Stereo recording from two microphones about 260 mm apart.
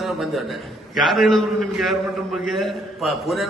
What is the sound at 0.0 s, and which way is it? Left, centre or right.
A man's voice, centre.